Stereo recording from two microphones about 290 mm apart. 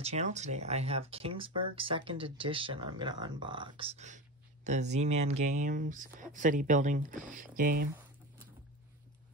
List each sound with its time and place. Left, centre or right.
0.0 s speech: right